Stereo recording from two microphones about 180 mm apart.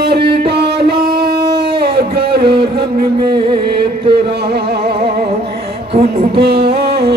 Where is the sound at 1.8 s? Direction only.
60° right (ahead or behind).